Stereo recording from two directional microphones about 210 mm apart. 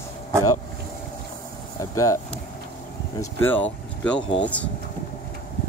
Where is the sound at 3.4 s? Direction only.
10° left (ahead or behind).